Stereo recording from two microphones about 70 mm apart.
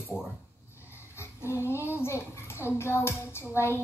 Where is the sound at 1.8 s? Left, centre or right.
Left.